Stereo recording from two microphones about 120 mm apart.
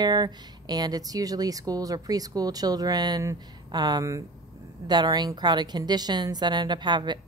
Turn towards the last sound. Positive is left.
turn(degrees=-40)  # may be behind; listen again after turning